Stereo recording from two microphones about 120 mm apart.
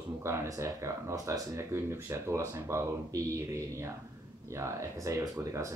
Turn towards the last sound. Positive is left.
turn(degrees=-25)  # may be behind; listen again after turning